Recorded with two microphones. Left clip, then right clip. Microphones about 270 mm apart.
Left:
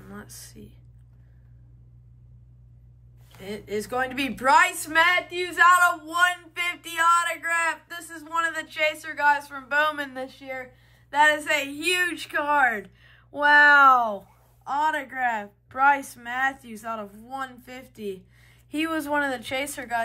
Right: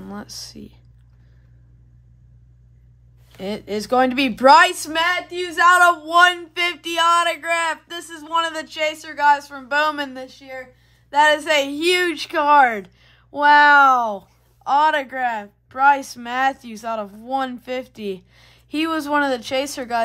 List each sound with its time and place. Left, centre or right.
0.0 s speech: centre
3.7 s speech: centre
8.6 s speech: centre